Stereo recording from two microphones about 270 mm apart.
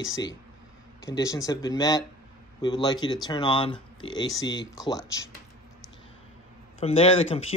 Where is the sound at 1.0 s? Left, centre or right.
Centre.